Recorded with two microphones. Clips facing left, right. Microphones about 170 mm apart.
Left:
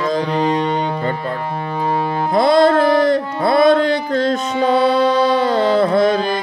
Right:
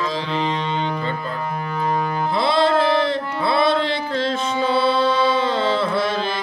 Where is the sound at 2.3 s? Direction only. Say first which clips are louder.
Left 6 dB; 45° left (ahead or behind).